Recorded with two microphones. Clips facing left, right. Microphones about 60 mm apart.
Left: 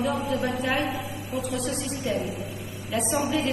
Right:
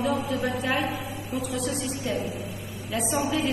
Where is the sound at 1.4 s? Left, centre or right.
Centre.